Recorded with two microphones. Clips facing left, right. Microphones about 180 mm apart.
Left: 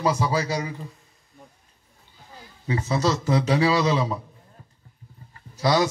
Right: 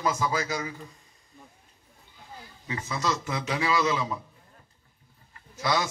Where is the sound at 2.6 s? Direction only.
40° left (ahead or behind).